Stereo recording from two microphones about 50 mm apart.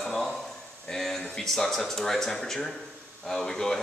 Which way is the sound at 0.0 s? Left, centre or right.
Centre.